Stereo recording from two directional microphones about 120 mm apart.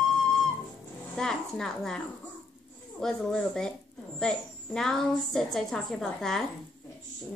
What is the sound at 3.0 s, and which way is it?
Speech, 5° left (ahead or behind).